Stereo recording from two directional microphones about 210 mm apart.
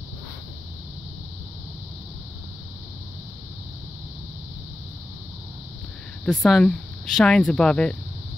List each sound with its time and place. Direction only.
6.2 s speech: 5° left (ahead or behind)